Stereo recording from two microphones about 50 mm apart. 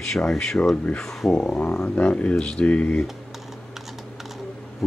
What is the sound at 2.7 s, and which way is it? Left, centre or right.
Speech, left.